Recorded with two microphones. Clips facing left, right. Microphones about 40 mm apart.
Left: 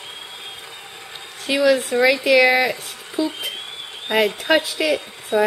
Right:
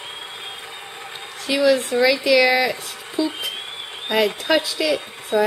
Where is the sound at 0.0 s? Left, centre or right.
Centre.